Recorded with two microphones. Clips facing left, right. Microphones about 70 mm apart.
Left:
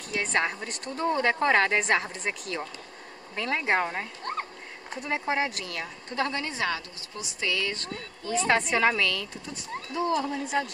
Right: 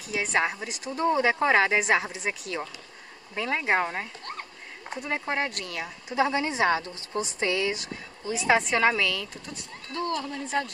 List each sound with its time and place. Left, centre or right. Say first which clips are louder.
0.1 s a woman's voice: right 1 dB; centre
4.2 s a sound: left 6 dB; left
4.8 s speech: left 1 dB; centre; by 7.7 s right
8.2 s a woman's voice: left 2 dB; left
8.5 s a woman's voice: right 2 dB; centre
9.9 s a woman's voice: left 3 dB; centre
10.4 s a woman's voice: even; centre